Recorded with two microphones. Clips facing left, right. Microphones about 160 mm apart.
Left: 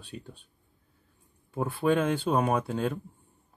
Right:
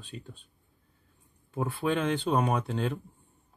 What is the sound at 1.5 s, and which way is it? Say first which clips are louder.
Speech: left 3 dB; 5° left (ahead or behind).